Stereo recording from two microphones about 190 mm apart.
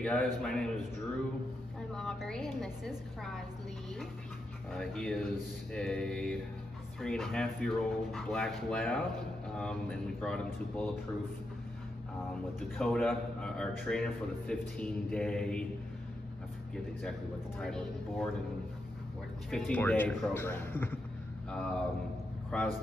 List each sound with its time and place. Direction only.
0.0 s a man's voice: 5° left (ahead or behind)
2.0 s a man's voice: 5° left (ahead or behind)
4.7 s a man's voice: 5° left (ahead or behind)
12.7 s a man's voice: 5° left (ahead or behind)
17.6 s a man's voice: 5° left (ahead or behind)
19.5 s a man's voice: 10° left (ahead or behind)